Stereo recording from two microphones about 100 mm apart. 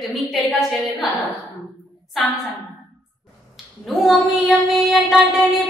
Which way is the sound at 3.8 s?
Centre (ahead or behind).